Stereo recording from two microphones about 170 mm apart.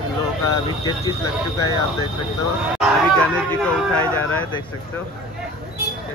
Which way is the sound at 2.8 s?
5° left (ahead or behind).